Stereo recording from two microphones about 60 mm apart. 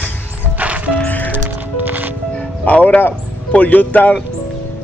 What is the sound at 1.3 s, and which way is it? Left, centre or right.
Music, right.